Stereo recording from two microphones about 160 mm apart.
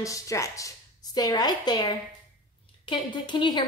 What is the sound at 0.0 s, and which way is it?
A woman's voice, 20° left (ahead or behind).